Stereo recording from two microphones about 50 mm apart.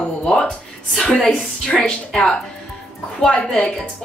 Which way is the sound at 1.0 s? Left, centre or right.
Centre.